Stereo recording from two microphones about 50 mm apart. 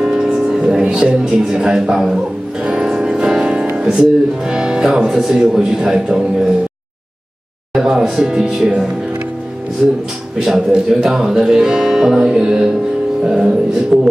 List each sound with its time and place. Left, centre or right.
0.0 s music: centre
3.7 s speech: centre
7.7 s speech: centre
9.8 s speech: right
10.4 s speech: centre